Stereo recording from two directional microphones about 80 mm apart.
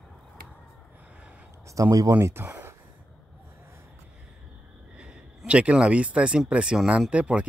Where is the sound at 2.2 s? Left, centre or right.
Right.